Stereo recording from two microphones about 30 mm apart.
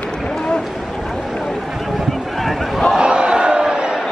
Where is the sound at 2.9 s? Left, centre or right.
Right.